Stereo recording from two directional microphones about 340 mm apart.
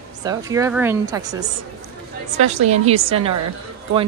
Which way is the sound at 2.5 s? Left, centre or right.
Centre.